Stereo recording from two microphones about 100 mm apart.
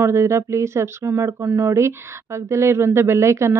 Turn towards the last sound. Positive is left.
turn(degrees=-30)  # may be behind; listen again after turning